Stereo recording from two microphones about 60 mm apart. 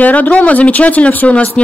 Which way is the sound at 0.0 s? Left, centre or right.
Left.